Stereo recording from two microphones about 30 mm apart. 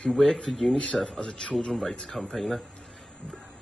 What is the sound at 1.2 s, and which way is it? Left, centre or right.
Speech, left.